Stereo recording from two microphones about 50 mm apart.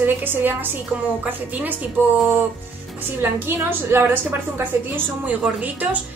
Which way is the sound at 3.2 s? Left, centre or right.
Right.